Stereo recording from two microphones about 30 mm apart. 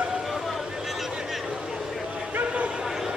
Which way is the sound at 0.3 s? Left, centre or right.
Centre.